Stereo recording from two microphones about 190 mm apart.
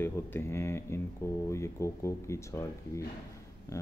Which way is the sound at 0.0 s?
10° left (ahead or behind).